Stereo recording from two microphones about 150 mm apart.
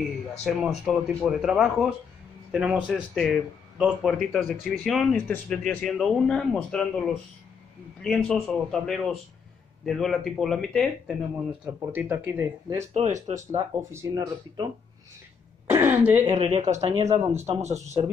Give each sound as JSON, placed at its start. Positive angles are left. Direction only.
{"t": 0.6, "sound": "speech", "side_deg": -5}
{"t": 11.3, "sound": "speech", "side_deg": -15}
{"t": 12.9, "sound": "speech", "side_deg": -55}
{"t": 13.5, "sound": "speech", "side_deg": -20}
{"t": 15.6, "sound": "throat clearing", "side_deg": -15}
{"t": 16.3, "sound": "speech", "side_deg": -45}
{"t": 18.0, "sound": "speech", "side_deg": -25}